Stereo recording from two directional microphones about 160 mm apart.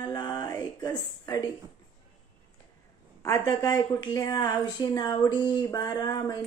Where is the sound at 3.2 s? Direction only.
20° left (ahead or behind).